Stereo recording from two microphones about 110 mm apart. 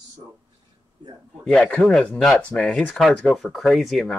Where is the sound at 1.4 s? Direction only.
5° left (ahead or behind).